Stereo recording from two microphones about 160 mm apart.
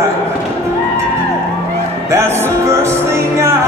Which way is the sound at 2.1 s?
15° right (ahead or behind).